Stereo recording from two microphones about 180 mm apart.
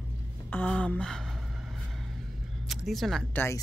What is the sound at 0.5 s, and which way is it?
Speech, 5° left (ahead or behind).